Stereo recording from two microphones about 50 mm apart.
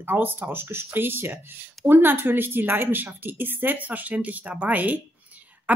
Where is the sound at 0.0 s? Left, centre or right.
Right.